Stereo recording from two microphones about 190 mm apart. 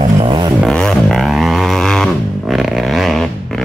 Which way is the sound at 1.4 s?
Centre (ahead or behind).